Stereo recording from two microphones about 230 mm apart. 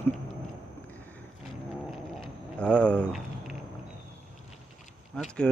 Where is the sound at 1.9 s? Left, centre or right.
Centre.